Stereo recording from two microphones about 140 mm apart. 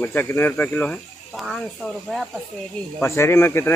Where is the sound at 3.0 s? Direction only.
20° left (ahead or behind).